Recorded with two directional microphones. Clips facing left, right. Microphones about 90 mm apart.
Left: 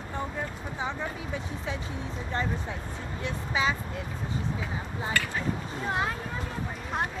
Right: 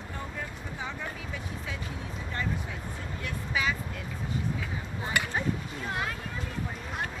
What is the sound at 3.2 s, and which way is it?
Speech, 25° left (ahead or behind).